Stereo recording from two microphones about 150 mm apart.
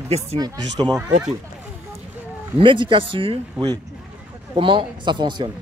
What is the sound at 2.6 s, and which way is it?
Speech, 35° right (ahead or behind).